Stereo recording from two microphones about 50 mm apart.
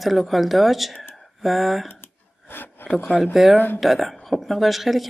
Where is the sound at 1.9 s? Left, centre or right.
Left.